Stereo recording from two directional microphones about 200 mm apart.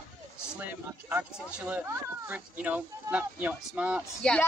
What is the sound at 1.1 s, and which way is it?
Speech, 5° right (ahead or behind).